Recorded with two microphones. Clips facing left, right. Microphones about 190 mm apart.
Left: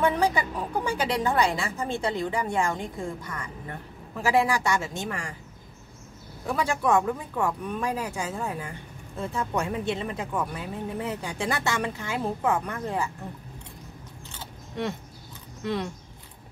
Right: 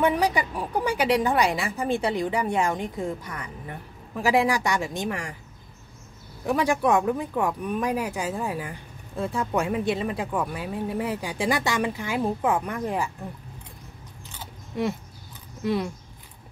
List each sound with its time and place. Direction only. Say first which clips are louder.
0.0 s speech: right 1 dB; 15° right (ahead or behind)
6.4 s speech: right 4 dB; 15° right (ahead or behind)
15.6 s speech: right 4 dB; 10° right (ahead or behind)